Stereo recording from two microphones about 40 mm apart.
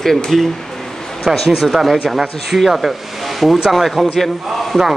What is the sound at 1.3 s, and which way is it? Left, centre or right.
Speech, centre.